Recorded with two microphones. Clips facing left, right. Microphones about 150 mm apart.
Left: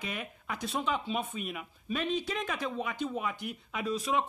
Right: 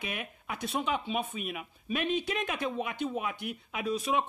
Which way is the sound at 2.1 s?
60° right (ahead or behind).